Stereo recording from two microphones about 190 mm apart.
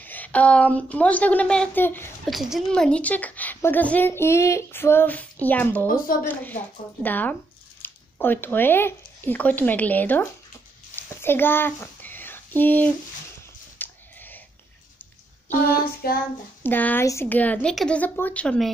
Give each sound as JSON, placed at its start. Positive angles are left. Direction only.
{"t": 0.0, "sound": "speech", "side_deg": 10}
{"t": 2.2, "sound": "speech", "side_deg": 0}
{"t": 11.0, "sound": "a sound", "side_deg": 10}
{"t": 15.6, "sound": "child singing", "side_deg": 50}
{"t": 16.6, "sound": "speech", "side_deg": 10}